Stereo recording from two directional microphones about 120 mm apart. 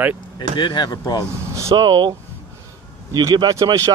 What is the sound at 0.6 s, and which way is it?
Speech, 35° left (ahead or behind).